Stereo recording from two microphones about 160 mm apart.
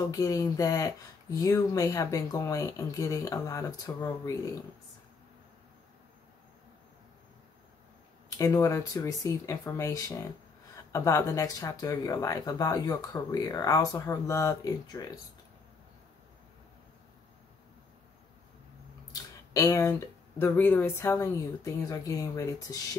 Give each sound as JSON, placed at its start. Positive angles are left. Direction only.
{"t": 0.1, "sound": "speech", "side_deg": 20}
{"t": 8.4, "sound": "speech", "side_deg": 20}
{"t": 19.1, "sound": "speech", "side_deg": 20}